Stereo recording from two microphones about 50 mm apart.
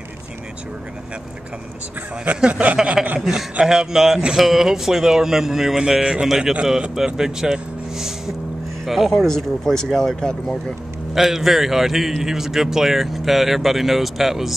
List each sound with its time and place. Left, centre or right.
2.2 s speech: right
3.2 s a man's voice: centre
11.1 s a man's voice: centre